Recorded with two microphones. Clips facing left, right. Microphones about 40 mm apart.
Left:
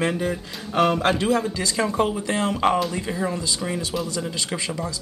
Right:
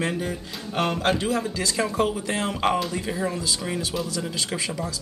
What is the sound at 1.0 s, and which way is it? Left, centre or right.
Speech, left.